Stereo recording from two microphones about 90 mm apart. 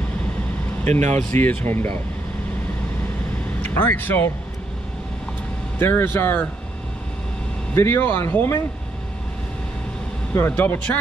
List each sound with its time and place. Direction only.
0.9 s speech: 25° left (ahead or behind)
3.6 s speech: 20° left (ahead or behind)
5.8 s speech: 25° left (ahead or behind)
7.7 s speech: 25° left (ahead or behind)
10.3 s speech: 25° left (ahead or behind)